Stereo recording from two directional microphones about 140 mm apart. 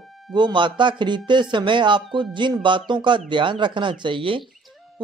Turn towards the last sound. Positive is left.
turn(degrees=-35)  # may be behind; listen again after turning